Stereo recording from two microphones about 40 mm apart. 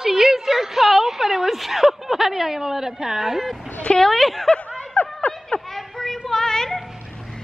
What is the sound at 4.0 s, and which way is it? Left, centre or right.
Speech, centre.